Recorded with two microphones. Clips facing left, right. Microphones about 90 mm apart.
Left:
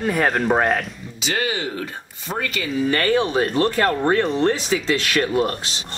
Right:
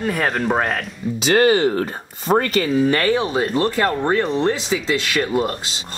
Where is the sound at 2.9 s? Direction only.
20° right (ahead or behind).